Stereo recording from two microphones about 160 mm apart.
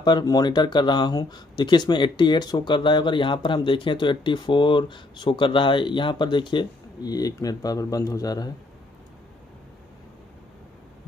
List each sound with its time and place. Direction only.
0.0 s speech: 25° left (ahead or behind)